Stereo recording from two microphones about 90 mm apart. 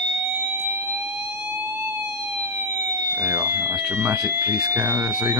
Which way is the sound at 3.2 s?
40° right (ahead or behind).